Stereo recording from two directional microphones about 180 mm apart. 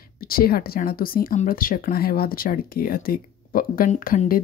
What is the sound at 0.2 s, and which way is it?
Speech, 55° left (ahead or behind).